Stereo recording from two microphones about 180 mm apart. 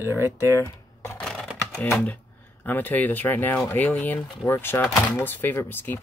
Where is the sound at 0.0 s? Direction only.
15° right (ahead or behind).